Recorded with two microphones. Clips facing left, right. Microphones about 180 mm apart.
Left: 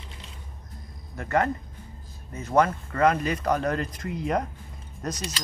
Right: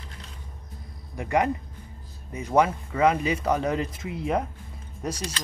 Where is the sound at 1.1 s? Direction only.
10° right (ahead or behind).